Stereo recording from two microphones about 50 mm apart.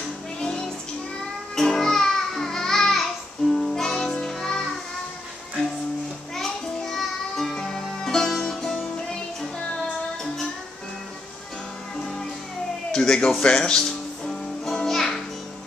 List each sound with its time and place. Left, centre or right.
0.4 s music: centre
6.3 s music: centre
10.2 s music: centre
12.0 s music: centre